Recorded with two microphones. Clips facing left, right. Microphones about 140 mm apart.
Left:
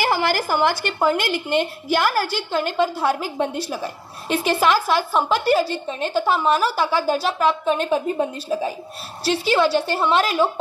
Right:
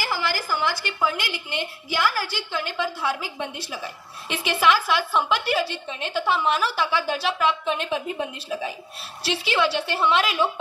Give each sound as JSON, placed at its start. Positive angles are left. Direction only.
{"t": 0.0, "sound": "a woman's voice", "side_deg": 60}